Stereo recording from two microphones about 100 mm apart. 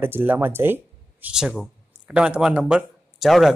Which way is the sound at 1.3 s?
5° right (ahead or behind).